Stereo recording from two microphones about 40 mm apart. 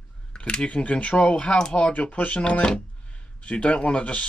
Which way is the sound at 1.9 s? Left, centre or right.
Left.